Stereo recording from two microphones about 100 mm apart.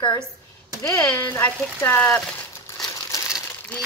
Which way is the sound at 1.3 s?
20° left (ahead or behind).